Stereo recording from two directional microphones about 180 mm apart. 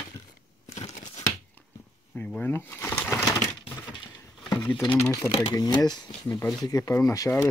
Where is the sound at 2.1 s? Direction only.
10° left (ahead or behind).